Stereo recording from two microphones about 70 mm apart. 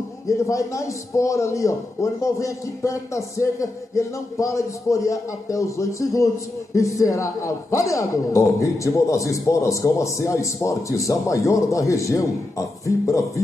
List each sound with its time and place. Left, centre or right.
0.3 s a man's voice: left